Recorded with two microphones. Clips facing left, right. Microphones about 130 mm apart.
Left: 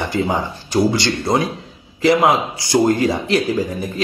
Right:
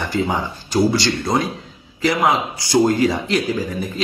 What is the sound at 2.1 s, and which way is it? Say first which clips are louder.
Speech: left 3 dB; 20° left (ahead or behind).